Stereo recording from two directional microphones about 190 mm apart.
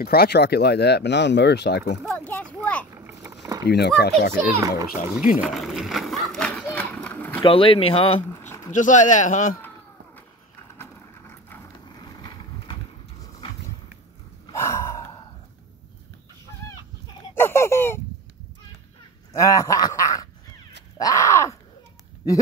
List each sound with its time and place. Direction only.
0.0 s speech: 55° left (ahead or behind)
2.0 s a sound: 10° left (ahead or behind)
3.0 s a sound: 10° right (ahead or behind)
3.6 s speech: 60° left (ahead or behind)
4.3 s a child's voice: 15° right (ahead or behind)
5.4 s run: centre (ahead or behind)
7.4 s speech: 30° left (ahead or behind)
8.7 s speech: 40° left (ahead or behind)
10.8 s vehicle: 10° left (ahead or behind)
14.5 s gasp: 15° left (ahead or behind)
17.3 s a sound: 10° left (ahead or behind)
19.3 s a sound: 15° left (ahead or behind)
21.0 s groan: 15° left (ahead or behind)